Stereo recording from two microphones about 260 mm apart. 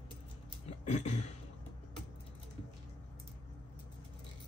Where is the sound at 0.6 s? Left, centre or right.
Left.